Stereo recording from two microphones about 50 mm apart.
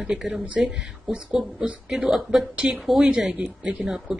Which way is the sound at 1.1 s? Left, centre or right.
Centre.